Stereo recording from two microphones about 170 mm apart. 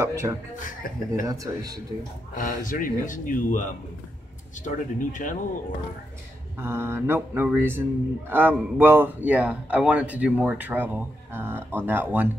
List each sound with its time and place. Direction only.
0.0 s speech: 15° right (ahead or behind)
0.6 s speech: 50° left (ahead or behind)
1.2 s speech: 20° right (ahead or behind)
2.3 s speech: 50° left (ahead or behind)
6.6 s speech: 15° right (ahead or behind)